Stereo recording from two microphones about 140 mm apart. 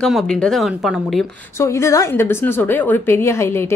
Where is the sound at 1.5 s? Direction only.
20° left (ahead or behind).